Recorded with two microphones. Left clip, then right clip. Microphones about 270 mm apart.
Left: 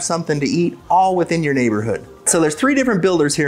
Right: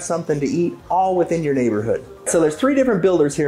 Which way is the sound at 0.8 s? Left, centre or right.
Left.